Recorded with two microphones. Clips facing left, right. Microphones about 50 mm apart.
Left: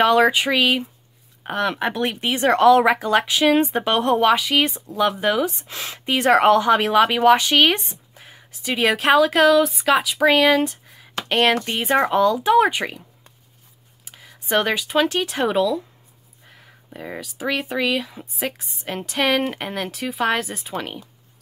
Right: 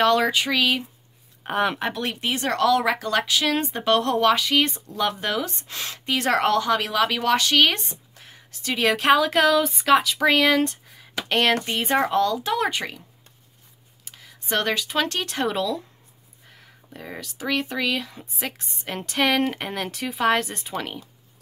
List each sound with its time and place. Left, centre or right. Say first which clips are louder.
0.0 s speech: left 4 dB; centre
2.0 s speech: left 4 dB; left
14.0 s speech: left 4 dB; centre